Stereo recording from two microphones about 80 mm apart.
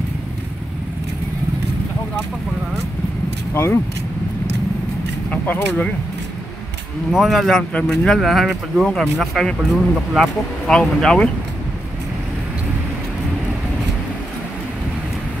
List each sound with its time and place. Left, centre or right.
3.5 s speech: left
5.3 s speech: left
7.1 s speech: centre